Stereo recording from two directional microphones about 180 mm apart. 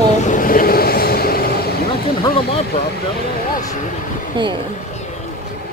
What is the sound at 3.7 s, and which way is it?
Speech, 45° left (ahead or behind).